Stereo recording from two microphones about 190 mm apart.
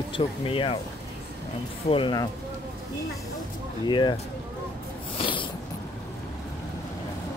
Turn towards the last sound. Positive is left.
turn(degrees=25)  # may be behind; listen again after turning